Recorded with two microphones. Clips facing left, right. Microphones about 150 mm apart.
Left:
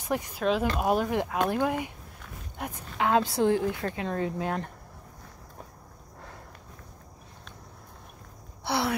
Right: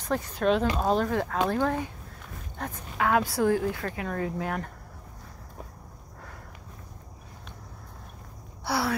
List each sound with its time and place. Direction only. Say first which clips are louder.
0.0 s speech: right 1 dB; 10° left (ahead or behind)
0.4 s a woman's voice: right 2 dB; centre (ahead or behind); by 4.7 s 25° left (ahead or behind)
8.6 s speech: even; 20° left (ahead or behind)